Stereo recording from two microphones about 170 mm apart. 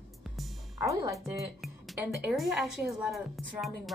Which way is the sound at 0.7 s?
20° right (ahead or behind).